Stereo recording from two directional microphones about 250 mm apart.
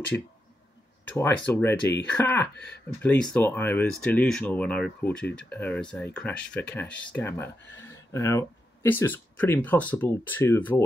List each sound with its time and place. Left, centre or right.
1.0 s speech: centre